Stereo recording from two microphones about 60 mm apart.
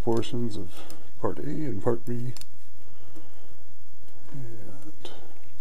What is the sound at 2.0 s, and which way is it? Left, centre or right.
Speech, centre.